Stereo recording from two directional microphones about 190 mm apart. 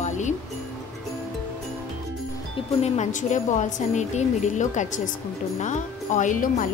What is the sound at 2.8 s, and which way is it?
A woman's voice, 40° left (ahead or behind).